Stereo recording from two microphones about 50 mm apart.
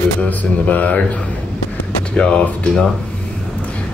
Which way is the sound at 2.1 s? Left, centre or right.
Left.